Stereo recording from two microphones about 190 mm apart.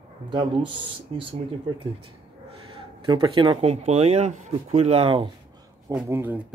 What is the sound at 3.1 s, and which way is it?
Speech, 25° right (ahead or behind).